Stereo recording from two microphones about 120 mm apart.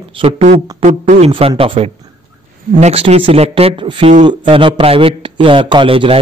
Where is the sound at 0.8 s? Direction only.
75° right (ahead or behind).